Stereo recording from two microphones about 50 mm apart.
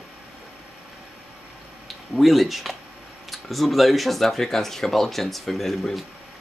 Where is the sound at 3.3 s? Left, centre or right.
Centre.